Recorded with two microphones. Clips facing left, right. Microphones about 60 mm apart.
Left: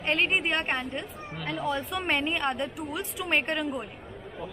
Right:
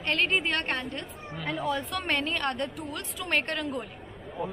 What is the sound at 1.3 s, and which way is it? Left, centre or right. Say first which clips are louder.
A woman's voice: even; centre.